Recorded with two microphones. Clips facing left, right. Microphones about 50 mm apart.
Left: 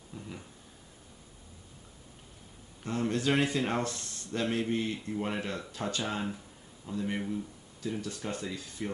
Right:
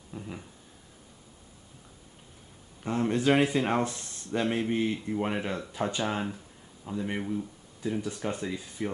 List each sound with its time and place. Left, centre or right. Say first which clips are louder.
0.1 s speech: right 4 dB; centre
2.8 s speech: right 4 dB; centre